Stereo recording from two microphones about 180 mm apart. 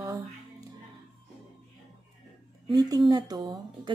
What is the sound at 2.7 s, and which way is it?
Speech, 20° right (ahead or behind).